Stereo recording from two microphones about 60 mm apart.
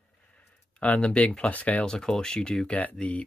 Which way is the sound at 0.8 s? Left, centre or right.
Centre.